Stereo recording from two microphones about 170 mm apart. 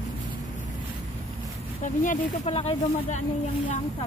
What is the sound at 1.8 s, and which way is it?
Speech, 40° left (ahead or behind).